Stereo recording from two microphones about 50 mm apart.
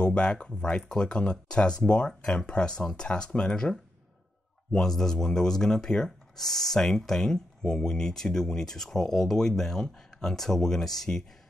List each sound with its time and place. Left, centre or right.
0.0 s speech: left
4.7 s speech: centre